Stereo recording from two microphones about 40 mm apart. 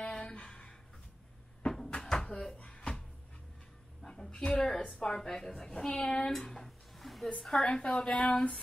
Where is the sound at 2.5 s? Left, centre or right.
Left.